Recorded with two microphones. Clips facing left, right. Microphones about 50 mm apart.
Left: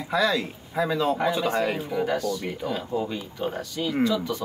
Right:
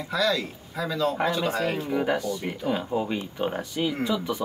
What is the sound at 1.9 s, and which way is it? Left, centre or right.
Speech, centre.